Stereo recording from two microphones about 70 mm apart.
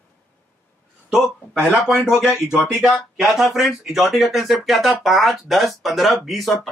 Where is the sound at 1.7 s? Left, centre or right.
Centre.